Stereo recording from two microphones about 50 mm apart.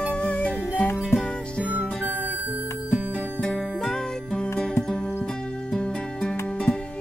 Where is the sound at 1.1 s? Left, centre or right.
Left.